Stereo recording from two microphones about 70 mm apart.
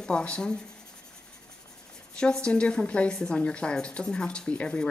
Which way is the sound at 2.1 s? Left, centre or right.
Centre.